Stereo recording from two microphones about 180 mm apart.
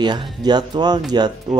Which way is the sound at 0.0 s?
25° right (ahead or behind).